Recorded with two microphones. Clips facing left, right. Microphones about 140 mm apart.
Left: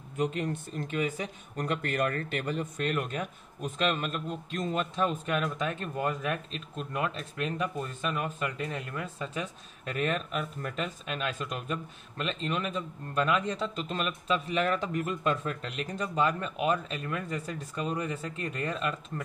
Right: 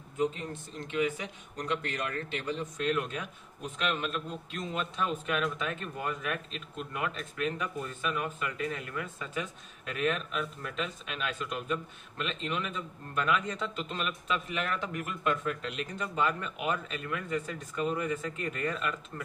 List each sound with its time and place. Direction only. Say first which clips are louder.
0.2 s speech: left 1 dB; 70° left (ahead or behind)
0.8 s speech: right 1 dB; 40° left (ahead or behind)
3.7 s speech: left 2 dB; 40° left (ahead or behind)